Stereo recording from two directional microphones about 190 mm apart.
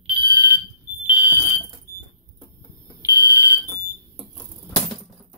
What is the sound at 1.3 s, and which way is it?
Fire alarm, 15° right (ahead or behind).